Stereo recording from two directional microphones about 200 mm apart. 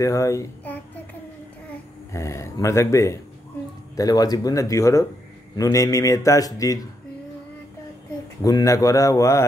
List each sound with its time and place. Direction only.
0.0 s a child's voice: 15° left (ahead or behind)
2.1 s a man's voice: 15° left (ahead or behind)
8.4 s a man's voice: 20° left (ahead or behind)